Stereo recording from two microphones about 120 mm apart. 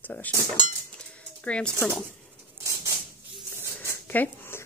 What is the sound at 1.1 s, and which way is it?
Typewriter, 10° left (ahead or behind).